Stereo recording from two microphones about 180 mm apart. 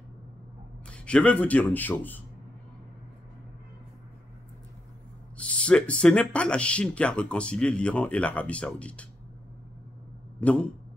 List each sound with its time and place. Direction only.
0.8 s speech: 5° left (ahead or behind)
5.5 s speech: 5° left (ahead or behind)
10.4 s speech: 10° left (ahead or behind)